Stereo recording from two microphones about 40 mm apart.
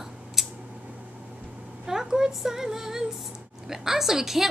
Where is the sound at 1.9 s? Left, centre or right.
Centre.